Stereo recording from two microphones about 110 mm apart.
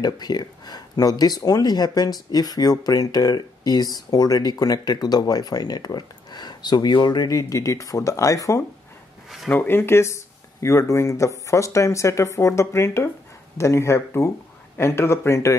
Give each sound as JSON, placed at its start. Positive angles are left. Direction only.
{"t": 0.0, "sound": "speech", "side_deg": 40}
{"t": 9.5, "sound": "speech", "side_deg": 20}